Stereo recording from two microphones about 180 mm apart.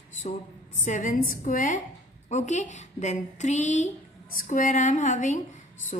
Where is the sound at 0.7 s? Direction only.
45° left (ahead or behind).